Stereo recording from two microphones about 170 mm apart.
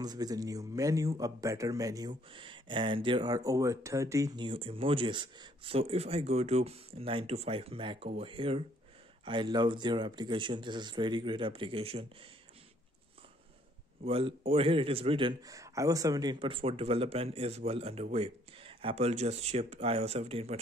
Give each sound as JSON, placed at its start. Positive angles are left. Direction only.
{"t": 0.0, "sound": "a man's voice", "side_deg": -20}
{"t": 4.5, "sound": "a man's voice", "side_deg": -30}
{"t": 14.0, "sound": "speech", "side_deg": -35}